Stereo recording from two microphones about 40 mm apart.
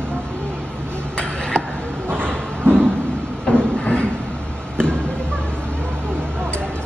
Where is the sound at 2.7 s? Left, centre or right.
Right.